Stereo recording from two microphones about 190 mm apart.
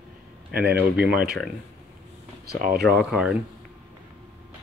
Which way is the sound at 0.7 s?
5° right (ahead or behind).